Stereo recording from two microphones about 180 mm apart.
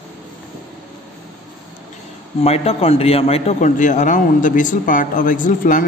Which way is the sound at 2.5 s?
35° left (ahead or behind).